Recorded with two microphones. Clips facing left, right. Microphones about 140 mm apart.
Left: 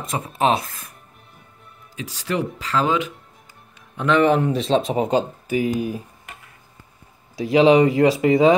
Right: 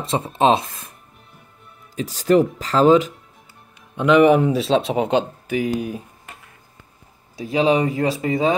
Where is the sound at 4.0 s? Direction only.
15° right (ahead or behind).